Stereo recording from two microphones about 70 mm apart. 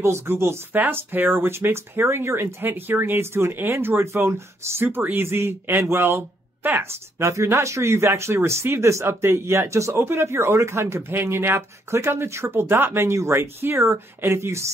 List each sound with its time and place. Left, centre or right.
0.0 s speech: right
0.7 s speech: right
6.8 s speech: right